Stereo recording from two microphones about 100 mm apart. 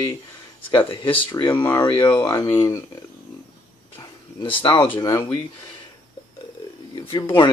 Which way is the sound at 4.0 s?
45° left (ahead or behind).